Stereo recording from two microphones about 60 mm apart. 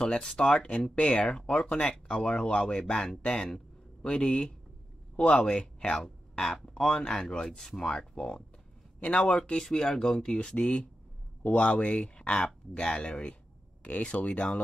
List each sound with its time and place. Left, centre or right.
0.0 s speech: centre